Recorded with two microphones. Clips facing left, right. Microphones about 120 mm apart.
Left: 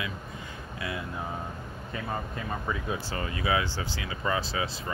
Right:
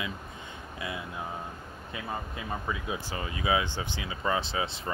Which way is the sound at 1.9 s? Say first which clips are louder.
Left 2 dB; 10° right (ahead or behind).